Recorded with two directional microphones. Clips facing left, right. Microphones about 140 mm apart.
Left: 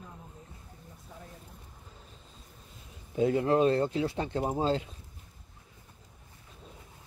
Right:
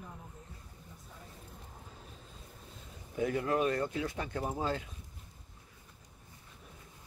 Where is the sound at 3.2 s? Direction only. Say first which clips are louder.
Left 6 dB; 25° left (ahead or behind).